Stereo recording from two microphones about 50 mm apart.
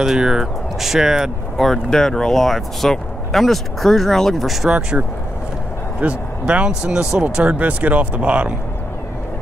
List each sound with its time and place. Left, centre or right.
0.0 s speech: centre
1.6 s speech: centre
4.6 s speech: right